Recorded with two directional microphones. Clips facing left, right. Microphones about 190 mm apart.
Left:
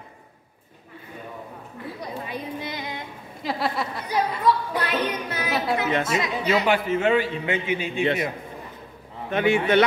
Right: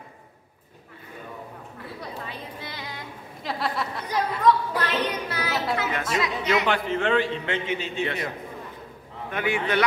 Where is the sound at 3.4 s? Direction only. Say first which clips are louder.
Left 2 dB; centre (ahead or behind).